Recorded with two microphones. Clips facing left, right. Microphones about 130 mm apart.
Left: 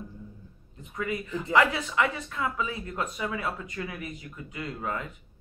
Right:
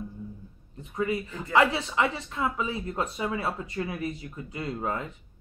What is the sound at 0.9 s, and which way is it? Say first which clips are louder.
Speech: right 2 dB; 30° right (ahead or behind).